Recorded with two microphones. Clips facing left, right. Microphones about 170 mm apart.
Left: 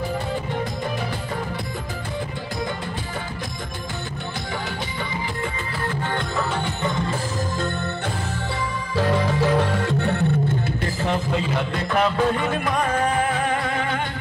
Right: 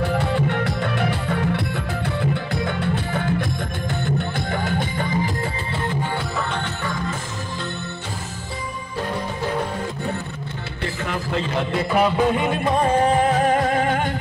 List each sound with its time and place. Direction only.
4.6 s music: 50° right (ahead or behind)
11.7 s music: 10° right (ahead or behind)
12.4 s music: 25° right (ahead or behind)
13.5 s music: 45° right (ahead or behind)